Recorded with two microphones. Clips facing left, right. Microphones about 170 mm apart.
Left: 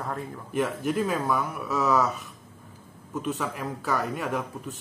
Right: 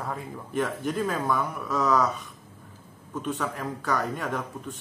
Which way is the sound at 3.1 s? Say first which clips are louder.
Even; 5° left (ahead or behind).